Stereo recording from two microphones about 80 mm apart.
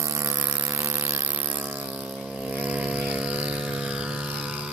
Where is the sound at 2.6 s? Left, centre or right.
Centre.